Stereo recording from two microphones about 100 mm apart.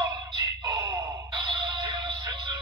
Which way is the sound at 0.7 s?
35° right (ahead or behind).